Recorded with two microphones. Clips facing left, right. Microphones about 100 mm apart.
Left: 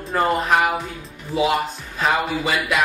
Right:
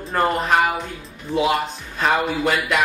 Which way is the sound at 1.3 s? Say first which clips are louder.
Even; 30° right (ahead or behind).